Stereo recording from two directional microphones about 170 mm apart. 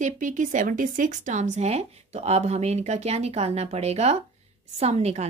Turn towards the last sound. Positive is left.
turn(degrees=-40)  # may be behind; listen again after turning